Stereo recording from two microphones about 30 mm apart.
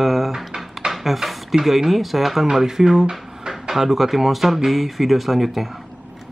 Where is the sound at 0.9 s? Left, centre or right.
Centre.